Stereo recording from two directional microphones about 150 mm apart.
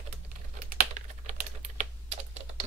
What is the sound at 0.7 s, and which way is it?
Typing, 55° right (ahead or behind).